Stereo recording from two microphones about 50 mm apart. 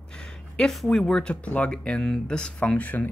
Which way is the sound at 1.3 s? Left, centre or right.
Left.